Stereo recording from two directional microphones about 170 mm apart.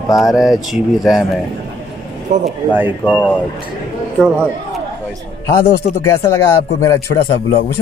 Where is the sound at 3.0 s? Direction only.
5° left (ahead or behind).